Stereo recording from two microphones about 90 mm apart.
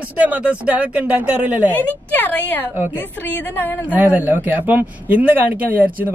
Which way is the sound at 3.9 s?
20° right (ahead or behind).